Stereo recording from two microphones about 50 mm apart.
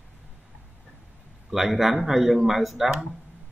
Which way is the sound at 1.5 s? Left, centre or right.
Centre.